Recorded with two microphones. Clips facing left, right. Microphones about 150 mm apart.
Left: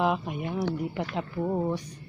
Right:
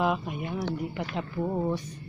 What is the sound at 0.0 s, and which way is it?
Speech, 20° left (ahead or behind).